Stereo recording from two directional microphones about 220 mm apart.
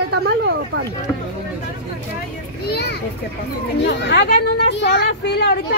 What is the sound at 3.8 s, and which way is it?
Speech, 50° left (ahead or behind).